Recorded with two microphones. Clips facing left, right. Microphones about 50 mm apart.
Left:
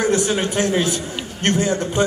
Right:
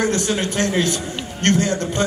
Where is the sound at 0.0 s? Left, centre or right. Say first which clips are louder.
Left 2 dB; centre.